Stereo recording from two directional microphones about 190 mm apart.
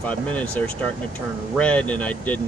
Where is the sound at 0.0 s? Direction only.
5° left (ahead or behind).